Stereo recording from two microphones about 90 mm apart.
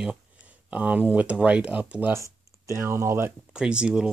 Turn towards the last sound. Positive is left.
turn(degrees=-10)  # may be behind; listen again after turning